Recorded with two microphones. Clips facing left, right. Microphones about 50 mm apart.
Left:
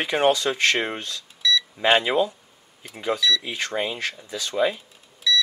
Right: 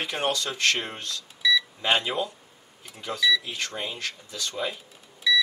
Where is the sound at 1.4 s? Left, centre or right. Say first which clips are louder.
Even; centre.